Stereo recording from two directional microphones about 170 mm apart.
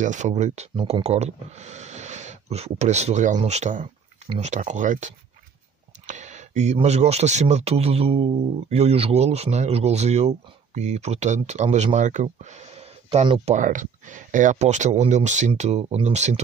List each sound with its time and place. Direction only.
0.0 s speech: 45° right (ahead or behind)